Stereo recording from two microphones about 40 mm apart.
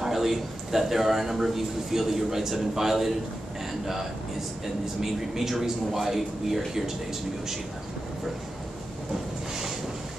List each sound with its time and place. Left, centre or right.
0.0 s a man's voice: centre
5.0 s a man's voice: centre